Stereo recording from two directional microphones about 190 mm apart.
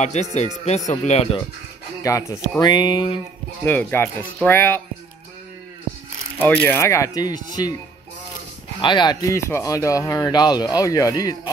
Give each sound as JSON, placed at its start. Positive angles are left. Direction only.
{"t": 0.0, "sound": "speech", "side_deg": 35}
{"t": 2.0, "sound": "speech", "side_deg": 15}
{"t": 3.6, "sound": "speech", "side_deg": 10}
{"t": 6.4, "sound": "speech", "side_deg": 10}
{"t": 8.8, "sound": "speech", "side_deg": 25}